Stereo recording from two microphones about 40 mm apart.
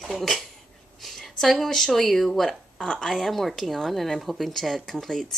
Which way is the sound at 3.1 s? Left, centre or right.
Centre.